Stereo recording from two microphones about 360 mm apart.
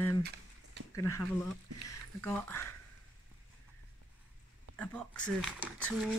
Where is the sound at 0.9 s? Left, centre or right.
Centre.